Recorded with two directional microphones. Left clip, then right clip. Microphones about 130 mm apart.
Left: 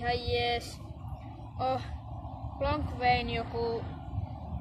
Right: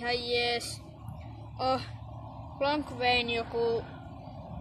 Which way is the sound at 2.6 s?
90° right.